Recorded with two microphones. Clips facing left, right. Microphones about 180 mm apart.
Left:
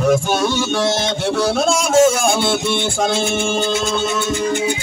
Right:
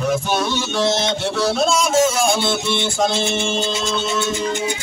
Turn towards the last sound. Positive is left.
turn(degrees=55)  # may be behind; listen again after turning